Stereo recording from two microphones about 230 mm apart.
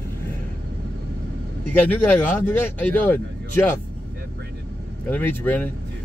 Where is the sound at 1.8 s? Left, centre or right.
Centre.